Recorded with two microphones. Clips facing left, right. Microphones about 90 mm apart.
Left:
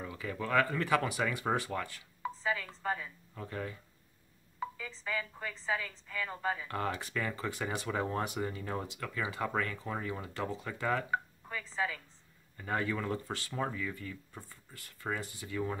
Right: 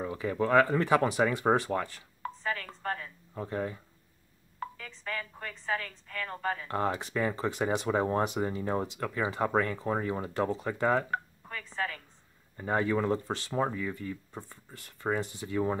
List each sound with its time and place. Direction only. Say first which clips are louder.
0.0 s speech: right 8 dB; 30° right (ahead or behind)
2.2 s a woman's voice: even; 5° left (ahead or behind)
3.3 s speech: right 7 dB; 30° right (ahead or behind)
4.6 s a woman's voice: even; 5° left (ahead or behind)
6.7 s speech: right 5 dB; 25° right (ahead or behind)
11.1 s a woman's voice: even; 5° left (ahead or behind)
12.5 s speech: right 6 dB; 25° right (ahead or behind)